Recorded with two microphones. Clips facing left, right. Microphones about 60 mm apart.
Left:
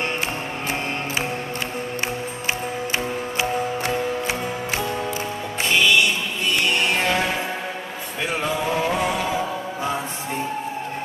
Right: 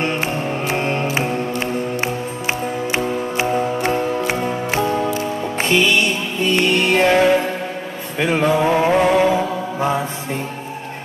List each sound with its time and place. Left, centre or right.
0.7 s music: right
3.3 s music: right